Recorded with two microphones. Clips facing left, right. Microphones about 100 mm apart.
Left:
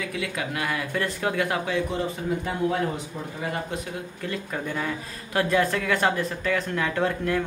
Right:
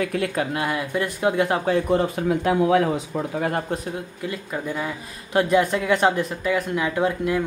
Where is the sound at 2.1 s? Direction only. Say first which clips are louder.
Right 7 dB; 85° right.